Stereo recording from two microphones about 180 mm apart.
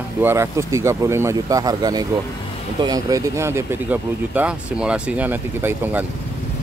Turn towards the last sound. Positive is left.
turn(degrees=-10)  # may be behind; listen again after turning